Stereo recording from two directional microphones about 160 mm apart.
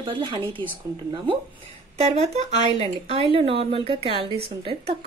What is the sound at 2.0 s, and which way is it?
Speech, 40° right (ahead or behind).